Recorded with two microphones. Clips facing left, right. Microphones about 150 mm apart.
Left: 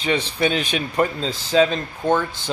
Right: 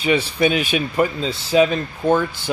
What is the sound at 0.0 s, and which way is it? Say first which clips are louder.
Speech: right 3 dB; 10° right (ahead or behind).